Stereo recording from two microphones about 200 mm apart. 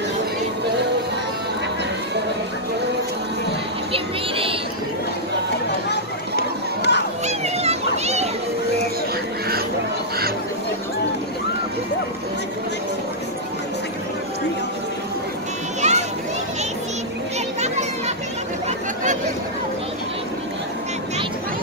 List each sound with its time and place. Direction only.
3.9 s music: 25° right (ahead or behind)
5.7 s a sound: 55° left (ahead or behind)
7.2 s children playing: 35° right (ahead or behind)
15.8 s children playing: 35° right (ahead or behind)
17.6 s children playing: 35° right (ahead or behind)